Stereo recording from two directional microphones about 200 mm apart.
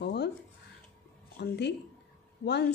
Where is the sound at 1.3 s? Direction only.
55° left (ahead or behind).